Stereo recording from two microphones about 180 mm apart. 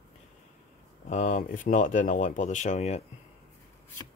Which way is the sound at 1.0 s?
45° left (ahead or behind).